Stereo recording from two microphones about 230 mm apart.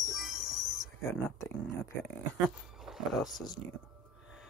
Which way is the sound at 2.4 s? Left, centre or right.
Centre.